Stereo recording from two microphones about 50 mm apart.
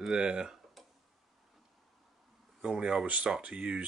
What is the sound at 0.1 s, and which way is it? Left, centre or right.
Speech, centre.